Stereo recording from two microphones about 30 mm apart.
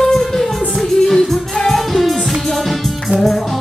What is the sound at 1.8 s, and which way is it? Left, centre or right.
Music, centre.